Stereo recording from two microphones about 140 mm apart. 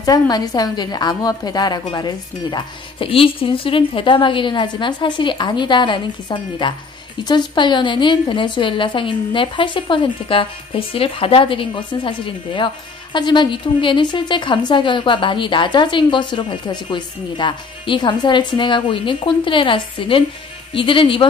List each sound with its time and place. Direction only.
0.0 s a woman's voice: 25° left (ahead or behind)